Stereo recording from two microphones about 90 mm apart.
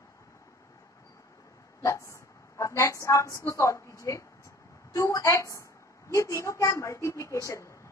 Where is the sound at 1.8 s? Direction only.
35° left (ahead or behind).